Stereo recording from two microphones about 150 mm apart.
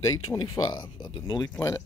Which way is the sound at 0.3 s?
30° left (ahead or behind).